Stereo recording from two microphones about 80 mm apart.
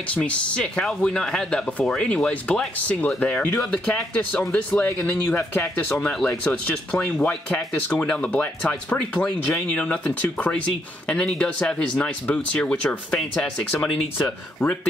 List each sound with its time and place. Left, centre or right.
0.1 s speech: centre
5.0 s speech: left
5.9 s speech: centre
6.2 s speech: centre